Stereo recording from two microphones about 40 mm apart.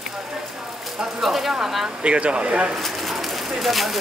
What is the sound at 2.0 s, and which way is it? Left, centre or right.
Speech, right.